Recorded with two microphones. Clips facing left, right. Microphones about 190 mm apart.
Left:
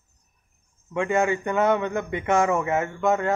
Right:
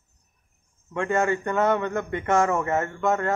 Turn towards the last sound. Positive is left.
turn(degrees=15)  # may be behind; listen again after turning